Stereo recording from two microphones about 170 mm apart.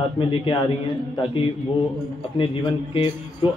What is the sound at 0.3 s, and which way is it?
A man's voice, 30° left (ahead or behind).